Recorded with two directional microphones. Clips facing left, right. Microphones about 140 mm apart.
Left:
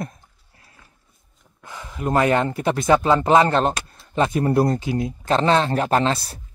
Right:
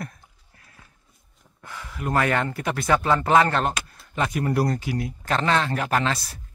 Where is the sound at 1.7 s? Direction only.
20° left (ahead or behind).